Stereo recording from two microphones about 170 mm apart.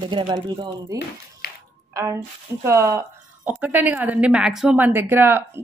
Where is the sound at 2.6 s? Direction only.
15° right (ahead or behind).